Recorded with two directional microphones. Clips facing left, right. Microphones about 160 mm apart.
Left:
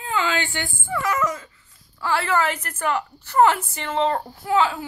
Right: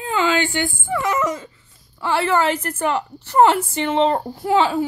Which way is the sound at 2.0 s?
25° right (ahead or behind).